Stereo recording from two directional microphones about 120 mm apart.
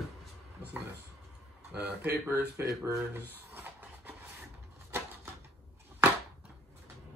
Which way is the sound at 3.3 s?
15° right (ahead or behind).